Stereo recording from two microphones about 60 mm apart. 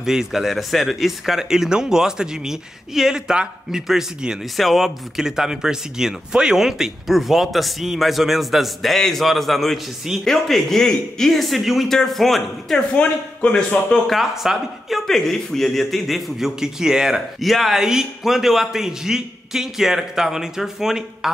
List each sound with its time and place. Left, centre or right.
0.0 s speech: centre
12.9 s a man's voice: centre
14.0 s speech: centre